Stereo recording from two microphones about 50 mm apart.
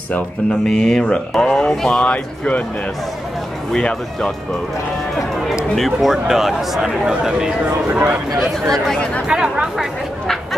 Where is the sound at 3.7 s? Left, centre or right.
Centre.